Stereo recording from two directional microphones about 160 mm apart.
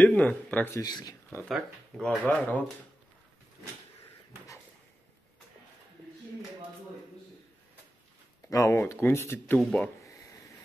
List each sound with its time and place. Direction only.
0.0 s speech: 10° left (ahead or behind)
0.8 s speech: 25° left (ahead or behind)
1.5 s speech: 5° left (ahead or behind)
8.5 s speech: 20° left (ahead or behind)
10.0 s a sound: 20° left (ahead or behind)